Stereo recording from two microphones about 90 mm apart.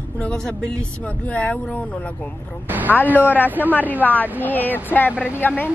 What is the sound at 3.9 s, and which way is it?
A woman's voice, 20° left (ahead or behind).